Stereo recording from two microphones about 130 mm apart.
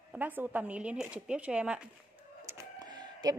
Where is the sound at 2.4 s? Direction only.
30° right (ahead or behind).